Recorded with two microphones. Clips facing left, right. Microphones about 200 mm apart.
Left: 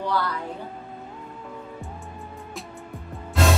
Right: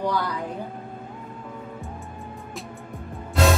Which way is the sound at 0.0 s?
15° right (ahead or behind).